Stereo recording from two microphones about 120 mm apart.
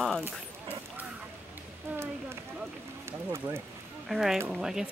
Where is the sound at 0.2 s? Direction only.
15° right (ahead or behind).